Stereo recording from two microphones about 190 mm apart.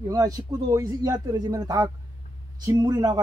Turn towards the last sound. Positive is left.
turn(degrees=-20)  # may be behind; listen again after turning